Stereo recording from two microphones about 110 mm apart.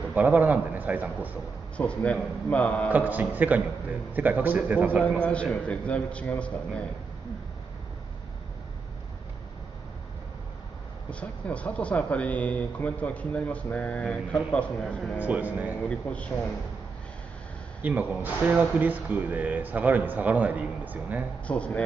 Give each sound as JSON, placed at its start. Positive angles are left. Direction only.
{"t": 0.1, "sound": "speech", "side_deg": -15}
{"t": 1.8, "sound": "speech", "side_deg": 10}
{"t": 2.9, "sound": "speech", "side_deg": -15}
{"t": 5.2, "sound": "speech", "side_deg": 10}
{"t": 11.1, "sound": "speech", "side_deg": 10}
{"t": 15.1, "sound": "speech", "side_deg": -15}
{"t": 15.9, "sound": "speech", "side_deg": 10}
{"t": 17.8, "sound": "speech", "side_deg": -15}
{"t": 21.5, "sound": "speech", "side_deg": 10}